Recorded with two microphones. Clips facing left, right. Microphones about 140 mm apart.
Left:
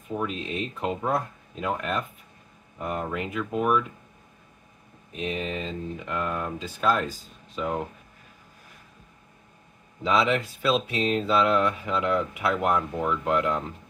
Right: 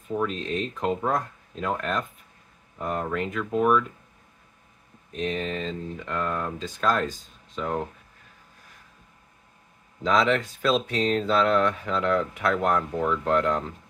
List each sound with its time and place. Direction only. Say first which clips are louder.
0.1 s speech: right 3 dB; 5° left (ahead or behind)
5.1 s speech: right 2 dB; 5° left (ahead or behind)
10.0 s speech: right 1 dB; 5° left (ahead or behind)